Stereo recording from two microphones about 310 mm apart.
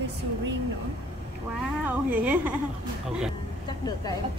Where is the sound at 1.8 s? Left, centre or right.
Centre.